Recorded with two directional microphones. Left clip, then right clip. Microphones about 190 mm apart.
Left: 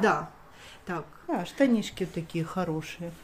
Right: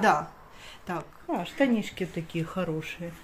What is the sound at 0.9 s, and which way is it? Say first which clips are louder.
Speech: right 1 dB; 15° right (ahead or behind).